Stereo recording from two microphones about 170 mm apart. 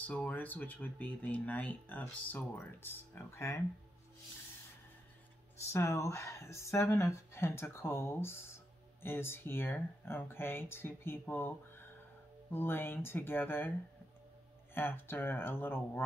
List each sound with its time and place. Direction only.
0.0 s speech: 10° left (ahead or behind)
5.6 s speech: 15° left (ahead or behind)
12.5 s speech: 15° left (ahead or behind)
14.7 s speech: 15° left (ahead or behind)